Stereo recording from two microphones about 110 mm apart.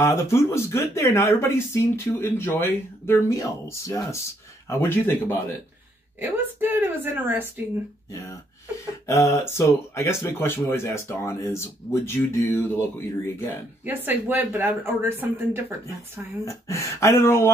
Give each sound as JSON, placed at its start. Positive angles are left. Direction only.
{"t": 0.0, "sound": "speech", "side_deg": 25}
{"t": 6.1, "sound": "a woman's voice", "side_deg": -20}
{"t": 8.1, "sound": "speech", "side_deg": 30}
{"t": 13.8, "sound": "speech", "side_deg": -15}
{"t": 16.4, "sound": "speech", "side_deg": 30}